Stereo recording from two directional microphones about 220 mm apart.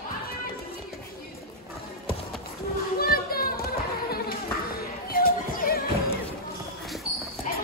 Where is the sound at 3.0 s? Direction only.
40° left (ahead or behind).